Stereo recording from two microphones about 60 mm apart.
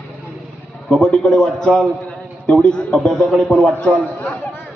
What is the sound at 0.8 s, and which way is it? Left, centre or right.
Speech, centre.